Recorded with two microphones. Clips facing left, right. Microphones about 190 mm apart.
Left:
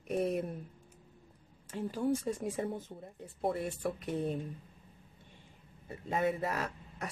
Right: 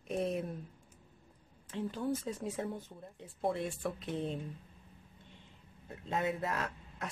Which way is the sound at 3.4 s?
5° left (ahead or behind).